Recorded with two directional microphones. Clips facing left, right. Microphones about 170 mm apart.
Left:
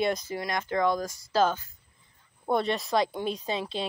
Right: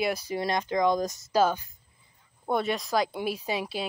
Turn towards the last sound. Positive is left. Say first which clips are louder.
# even
turn(degrees=-10)  # may be behind; listen again after turning